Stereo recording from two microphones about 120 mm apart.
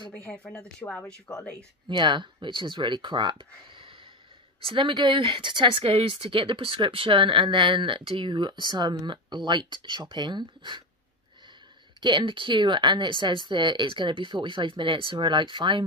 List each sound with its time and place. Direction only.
0.1 s speech: 10° left (ahead or behind)
1.9 s speech: 40° right (ahead or behind)
12.0 s speech: 40° right (ahead or behind)